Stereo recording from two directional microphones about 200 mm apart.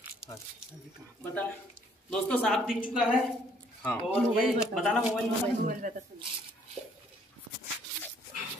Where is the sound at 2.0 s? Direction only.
5° left (ahead or behind).